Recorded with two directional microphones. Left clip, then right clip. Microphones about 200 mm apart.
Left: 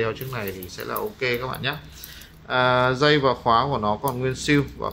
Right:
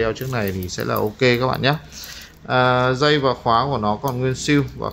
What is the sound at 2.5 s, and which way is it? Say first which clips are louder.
Speech: right 3 dB; 10° right (ahead or behind).